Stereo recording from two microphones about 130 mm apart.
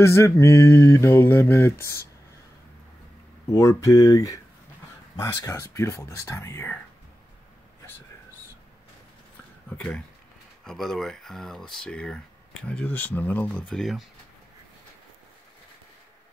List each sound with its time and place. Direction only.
0.0 s mantra: 20° left (ahead or behind)
3.5 s mantra: 25° left (ahead or behind)
9.7 s speech: 10° left (ahead or behind)